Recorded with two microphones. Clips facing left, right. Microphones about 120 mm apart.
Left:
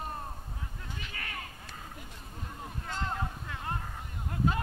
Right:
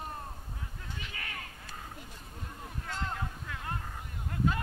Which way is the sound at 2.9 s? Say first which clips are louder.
Left 2 dB; 20° left (ahead or behind).